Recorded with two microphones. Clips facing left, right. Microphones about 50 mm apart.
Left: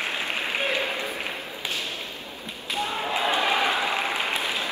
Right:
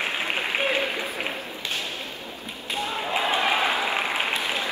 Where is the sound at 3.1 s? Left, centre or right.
Right.